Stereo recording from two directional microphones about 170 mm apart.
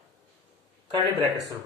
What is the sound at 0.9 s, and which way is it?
Speech, 20° right (ahead or behind).